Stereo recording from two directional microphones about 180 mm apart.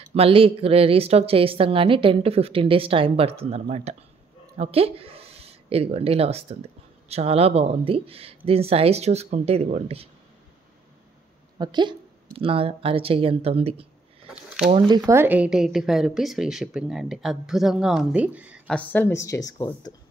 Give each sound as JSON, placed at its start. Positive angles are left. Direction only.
{"t": 0.1, "sound": "a woman's voice", "side_deg": -30}
{"t": 11.5, "sound": "a woman's voice", "side_deg": -25}
{"t": 14.2, "sound": "a sound", "side_deg": -5}
{"t": 14.7, "sound": "speech", "side_deg": -25}
{"t": 15.0, "sound": "a woman's voice", "side_deg": -10}
{"t": 18.7, "sound": "speech", "side_deg": 10}